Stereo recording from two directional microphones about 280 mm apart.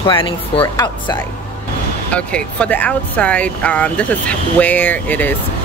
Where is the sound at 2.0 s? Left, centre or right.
Centre.